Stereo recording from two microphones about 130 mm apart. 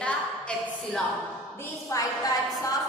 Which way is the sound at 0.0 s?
10° left (ahead or behind).